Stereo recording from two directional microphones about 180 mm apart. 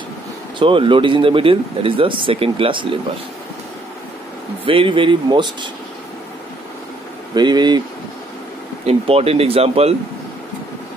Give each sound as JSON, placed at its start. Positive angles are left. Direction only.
{"t": 0.6, "sound": "speech", "side_deg": -30}
{"t": 4.6, "sound": "speech", "side_deg": -30}
{"t": 7.3, "sound": "speech", "side_deg": -25}
{"t": 8.8, "sound": "speech", "side_deg": -35}